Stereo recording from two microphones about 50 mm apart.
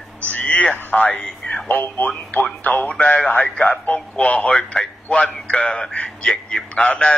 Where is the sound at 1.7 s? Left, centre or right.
Left.